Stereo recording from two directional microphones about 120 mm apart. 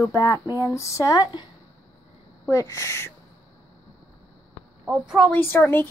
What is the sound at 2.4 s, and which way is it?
Speech, 25° left (ahead or behind).